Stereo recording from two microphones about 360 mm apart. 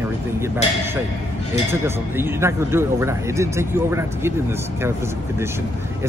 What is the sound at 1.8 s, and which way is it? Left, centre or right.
Speech, centre.